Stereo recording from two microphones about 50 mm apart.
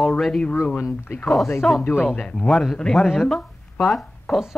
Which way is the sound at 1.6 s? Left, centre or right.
Centre.